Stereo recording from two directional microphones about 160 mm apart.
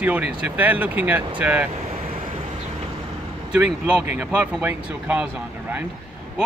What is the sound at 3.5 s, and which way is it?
A man's voice, 5° right (ahead or behind).